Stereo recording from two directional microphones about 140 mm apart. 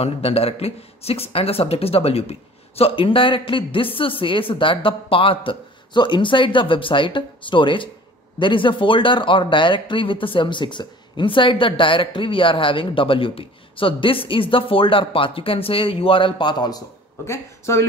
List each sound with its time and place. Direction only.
0.0 s speech: 45° left (ahead or behind)
17.3 s speech: 20° left (ahead or behind)